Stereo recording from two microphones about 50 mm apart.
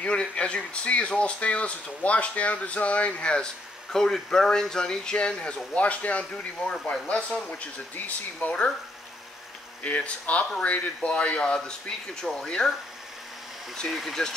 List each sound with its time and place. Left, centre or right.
0.0 s speech: left
3.9 s speech: centre
7.9 s speech: left
9.8 s speech: left
13.8 s speech: centre